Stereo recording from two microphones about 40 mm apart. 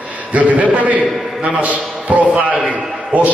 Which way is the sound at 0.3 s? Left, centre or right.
Right.